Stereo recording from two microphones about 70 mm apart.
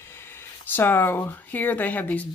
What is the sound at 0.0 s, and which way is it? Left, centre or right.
Speech, left.